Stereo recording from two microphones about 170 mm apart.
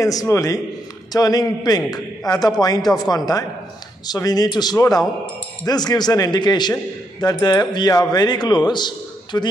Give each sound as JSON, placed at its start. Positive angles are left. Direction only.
{"t": 0.0, "sound": "a man's voice", "side_deg": 20}